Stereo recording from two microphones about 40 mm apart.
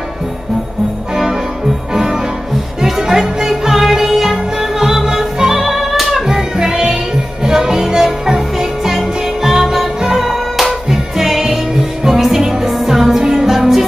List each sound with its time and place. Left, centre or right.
2.0 s music: centre